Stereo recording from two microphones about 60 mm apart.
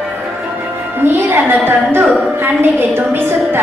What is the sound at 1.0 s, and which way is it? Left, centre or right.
Music, right.